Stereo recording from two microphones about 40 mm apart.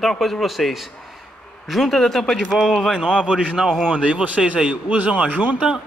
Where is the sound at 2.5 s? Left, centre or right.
Centre.